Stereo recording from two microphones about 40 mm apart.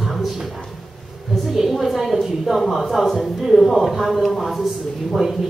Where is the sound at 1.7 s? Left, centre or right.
Centre.